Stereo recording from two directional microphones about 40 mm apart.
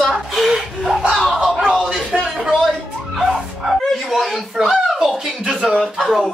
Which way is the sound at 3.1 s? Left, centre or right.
Centre.